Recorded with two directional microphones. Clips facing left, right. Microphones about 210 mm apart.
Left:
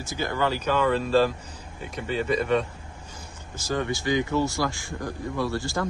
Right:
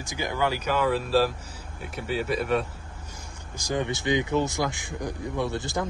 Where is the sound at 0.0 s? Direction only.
15° right (ahead or behind).